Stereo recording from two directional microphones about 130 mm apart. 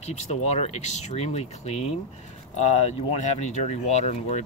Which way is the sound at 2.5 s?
70° left (ahead or behind).